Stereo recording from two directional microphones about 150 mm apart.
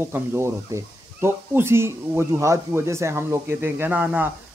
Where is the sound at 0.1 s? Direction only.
15° right (ahead or behind).